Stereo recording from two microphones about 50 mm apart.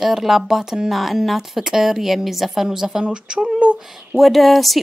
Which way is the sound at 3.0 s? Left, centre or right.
Centre.